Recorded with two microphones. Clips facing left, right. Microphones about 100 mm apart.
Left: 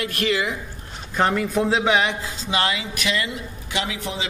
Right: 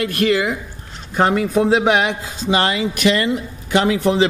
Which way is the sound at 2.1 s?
50° right (ahead or behind).